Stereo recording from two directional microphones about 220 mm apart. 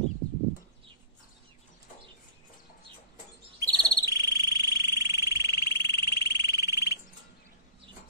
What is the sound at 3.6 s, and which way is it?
Frog, 15° right (ahead or behind).